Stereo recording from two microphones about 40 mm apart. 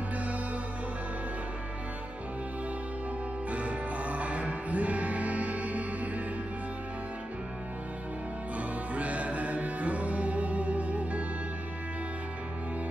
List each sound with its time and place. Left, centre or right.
3.4 s music: right
8.5 s music: right